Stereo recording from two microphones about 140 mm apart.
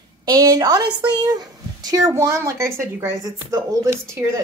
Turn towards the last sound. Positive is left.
turn(degrees=-20)  # may be behind; listen again after turning